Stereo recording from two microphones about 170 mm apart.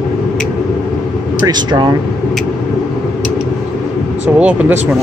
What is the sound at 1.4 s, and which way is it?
Speech, 25° right (ahead or behind).